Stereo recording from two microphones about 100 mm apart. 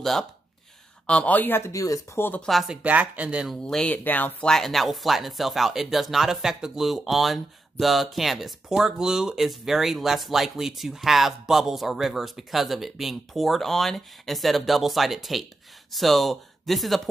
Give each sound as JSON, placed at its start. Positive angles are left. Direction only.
{"t": 0.0, "sound": "speech", "side_deg": 5}
{"t": 1.0, "sound": "speech", "side_deg": 15}
{"t": 1.7, "sound": "speech", "side_deg": 35}
{"t": 2.1, "sound": "speech", "side_deg": 20}
{"t": 2.4, "sound": "speech", "side_deg": 0}
{"t": 2.8, "sound": "speech", "side_deg": -15}
{"t": 3.6, "sound": "speech", "side_deg": 10}
{"t": 4.5, "sound": "speech", "side_deg": 5}